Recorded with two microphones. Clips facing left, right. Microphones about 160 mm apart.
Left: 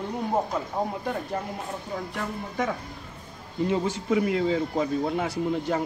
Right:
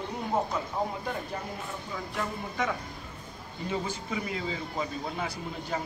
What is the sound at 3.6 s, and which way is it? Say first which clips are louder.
Speech: left 8 dB; 75° left (ahead or behind).